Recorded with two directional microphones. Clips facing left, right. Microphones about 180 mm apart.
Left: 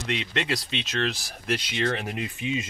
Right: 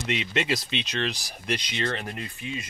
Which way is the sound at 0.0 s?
5° right (ahead or behind).